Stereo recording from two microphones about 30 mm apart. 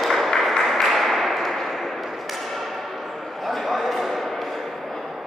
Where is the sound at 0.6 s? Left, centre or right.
Centre.